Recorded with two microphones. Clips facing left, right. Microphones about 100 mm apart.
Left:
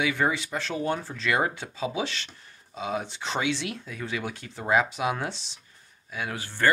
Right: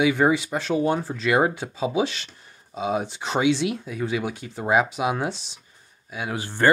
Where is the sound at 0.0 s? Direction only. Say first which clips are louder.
Right 6 dB; 15° right (ahead or behind).